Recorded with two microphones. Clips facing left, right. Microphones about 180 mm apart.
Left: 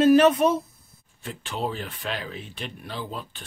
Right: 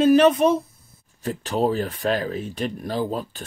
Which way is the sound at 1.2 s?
40° right (ahead or behind).